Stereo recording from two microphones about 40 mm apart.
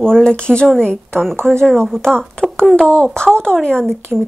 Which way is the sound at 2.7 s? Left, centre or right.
Left.